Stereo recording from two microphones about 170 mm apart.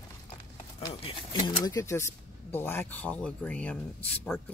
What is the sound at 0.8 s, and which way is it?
Speech, 25° left (ahead or behind).